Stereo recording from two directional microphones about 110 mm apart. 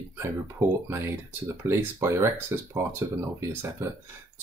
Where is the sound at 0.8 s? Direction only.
20° right (ahead or behind).